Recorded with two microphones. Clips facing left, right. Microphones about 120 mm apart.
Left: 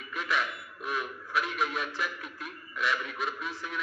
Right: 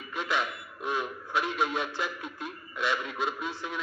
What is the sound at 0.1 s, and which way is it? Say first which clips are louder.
A man's voice: right 1 dB; 25° right (ahead or behind).